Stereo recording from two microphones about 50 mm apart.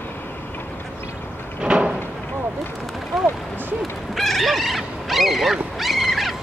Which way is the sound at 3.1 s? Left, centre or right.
Centre.